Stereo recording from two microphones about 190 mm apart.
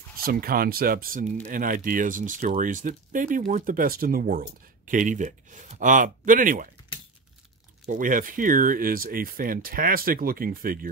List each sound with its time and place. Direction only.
0.2 s speech: 50° right (ahead or behind)
7.9 s speech: 45° right (ahead or behind)